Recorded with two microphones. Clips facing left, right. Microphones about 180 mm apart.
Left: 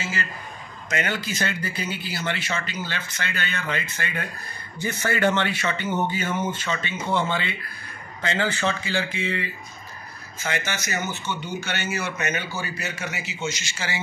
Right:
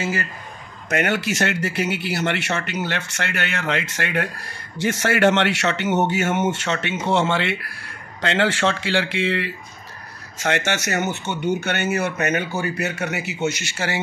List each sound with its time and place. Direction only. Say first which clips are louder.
0.8 s speech: right 6 dB; 65° right (ahead or behind)